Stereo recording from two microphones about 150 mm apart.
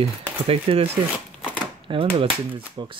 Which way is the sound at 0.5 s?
40° right (ahead or behind).